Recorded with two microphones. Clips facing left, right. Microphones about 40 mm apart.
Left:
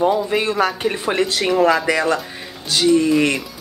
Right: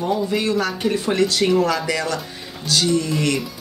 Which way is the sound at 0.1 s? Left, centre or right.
Left.